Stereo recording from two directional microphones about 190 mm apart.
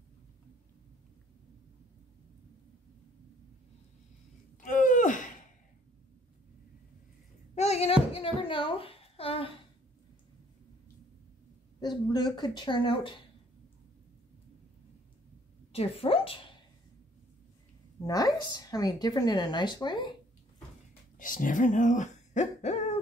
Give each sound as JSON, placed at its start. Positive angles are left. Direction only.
{"t": 4.6, "sound": "a sound", "side_deg": 40}
{"t": 7.5, "sound": "a child's voice", "side_deg": 35}
{"t": 11.8, "sound": "speech", "side_deg": 20}
{"t": 15.7, "sound": "speech", "side_deg": 30}
{"t": 18.0, "sound": "speech", "side_deg": 20}
{"t": 21.2, "sound": "speech", "side_deg": 45}